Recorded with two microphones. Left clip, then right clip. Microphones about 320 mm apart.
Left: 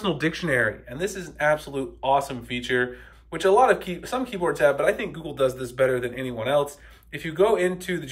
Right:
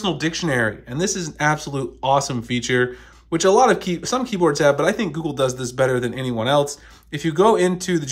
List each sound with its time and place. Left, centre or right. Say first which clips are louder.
0.0 s speech: right 3 dB; centre